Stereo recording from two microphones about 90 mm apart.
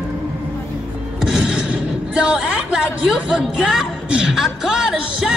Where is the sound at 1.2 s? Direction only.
5° right (ahead or behind).